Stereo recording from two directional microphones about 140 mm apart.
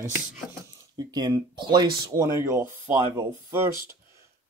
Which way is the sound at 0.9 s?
30° right (ahead or behind).